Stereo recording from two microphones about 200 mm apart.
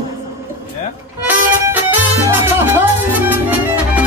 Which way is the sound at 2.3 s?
10° right (ahead or behind).